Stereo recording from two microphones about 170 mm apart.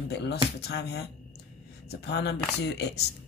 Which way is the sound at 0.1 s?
80° left.